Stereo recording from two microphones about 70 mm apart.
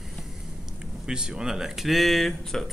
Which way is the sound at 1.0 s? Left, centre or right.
Centre.